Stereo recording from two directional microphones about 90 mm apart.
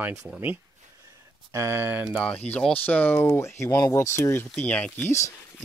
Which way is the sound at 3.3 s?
30° left (ahead or behind).